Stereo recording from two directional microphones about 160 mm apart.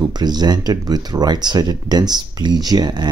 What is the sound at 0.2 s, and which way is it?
Speech, 25° right (ahead or behind).